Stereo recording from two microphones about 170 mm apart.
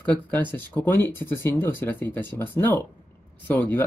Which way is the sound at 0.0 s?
10° left (ahead or behind).